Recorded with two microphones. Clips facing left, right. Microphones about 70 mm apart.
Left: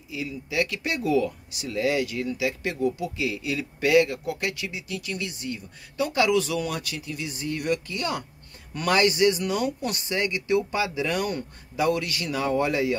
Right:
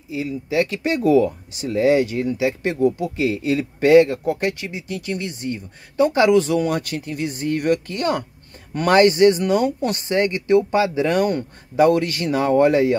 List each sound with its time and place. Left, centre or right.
0.1 s speech: right